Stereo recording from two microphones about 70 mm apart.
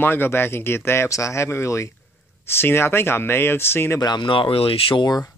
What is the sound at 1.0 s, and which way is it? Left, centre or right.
Speech, left.